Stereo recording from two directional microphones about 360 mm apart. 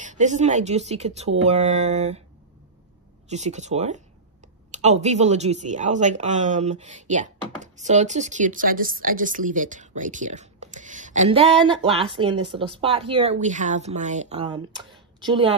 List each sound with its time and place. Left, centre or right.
0.0 s speech: centre
3.3 s a woman's voice: centre